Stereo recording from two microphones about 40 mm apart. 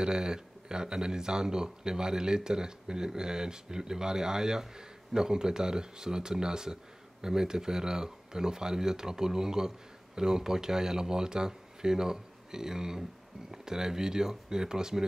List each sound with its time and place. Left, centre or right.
0.0 s speech: centre